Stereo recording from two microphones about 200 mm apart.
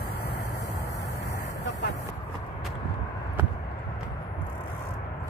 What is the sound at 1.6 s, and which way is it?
Vehicle, 55° left (ahead or behind).